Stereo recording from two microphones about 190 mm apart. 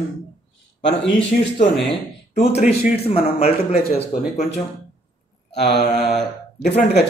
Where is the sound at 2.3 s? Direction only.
35° left (ahead or behind).